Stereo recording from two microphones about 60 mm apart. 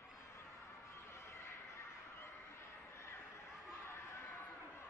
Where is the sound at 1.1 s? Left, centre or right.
Left.